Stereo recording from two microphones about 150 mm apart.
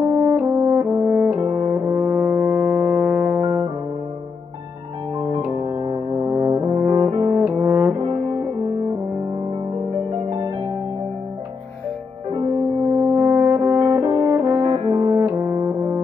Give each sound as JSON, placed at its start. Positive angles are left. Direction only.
{"t": 0.2, "sound": "french horn", "side_deg": -15}
{"t": 1.4, "sound": "brass instrument", "side_deg": -25}
{"t": 3.3, "sound": "music", "side_deg": -20}
{"t": 5.3, "sound": "keyboard", "side_deg": -25}
{"t": 6.2, "sound": "brass instrument", "side_deg": -15}
{"t": 7.0, "sound": "brass instrument", "side_deg": -40}
{"t": 7.4, "sound": "brass instrument", "side_deg": -15}
{"t": 13.1, "sound": "french horn", "side_deg": -15}
{"t": 14.0, "sound": "french horn", "side_deg": -25}
{"t": 14.3, "sound": "french horn", "side_deg": -15}
{"t": 14.6, "sound": "french horn", "side_deg": -35}
{"t": 15.1, "sound": "brass instrument", "side_deg": -15}